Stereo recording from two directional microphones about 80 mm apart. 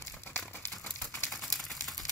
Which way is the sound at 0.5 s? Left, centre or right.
Left.